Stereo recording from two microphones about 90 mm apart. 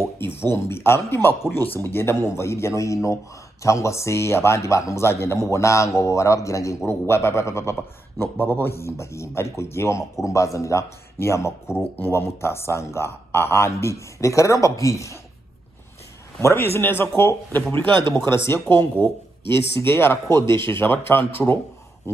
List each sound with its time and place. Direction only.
0.2 s a man's voice: 25° left (ahead or behind)
16.3 s a man's voice: 30° left (ahead or behind)
17.8 s speech: 70° right (ahead or behind)
18.5 s a man's voice: 25° left (ahead or behind)